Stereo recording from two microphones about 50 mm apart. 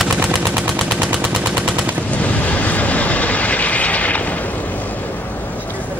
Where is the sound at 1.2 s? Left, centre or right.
Centre.